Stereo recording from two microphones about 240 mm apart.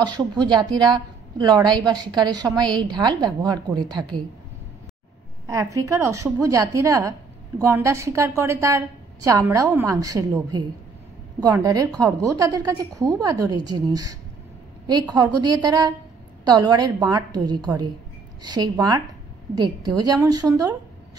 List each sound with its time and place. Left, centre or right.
0.0 s a woman's voice: centre
5.5 s a woman's voice: centre